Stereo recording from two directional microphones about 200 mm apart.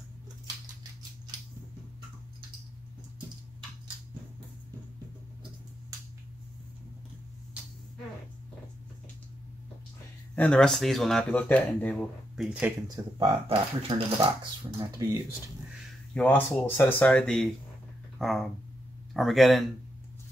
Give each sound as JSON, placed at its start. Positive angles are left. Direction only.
{"t": 10.3, "sound": "speech", "side_deg": 5}
{"t": 13.0, "sound": "speech", "side_deg": -15}
{"t": 13.5, "sound": "speech", "side_deg": -25}
{"t": 15.0, "sound": "speech", "side_deg": -15}
{"t": 16.2, "sound": "speech", "side_deg": 10}